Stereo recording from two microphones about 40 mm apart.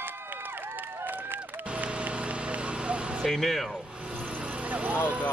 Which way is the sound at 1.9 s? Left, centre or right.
Right.